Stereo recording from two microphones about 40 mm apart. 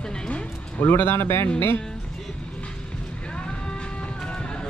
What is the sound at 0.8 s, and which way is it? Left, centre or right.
Speech, left.